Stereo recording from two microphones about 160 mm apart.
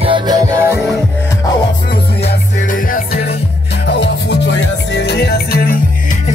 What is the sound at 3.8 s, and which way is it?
Music, 90° left.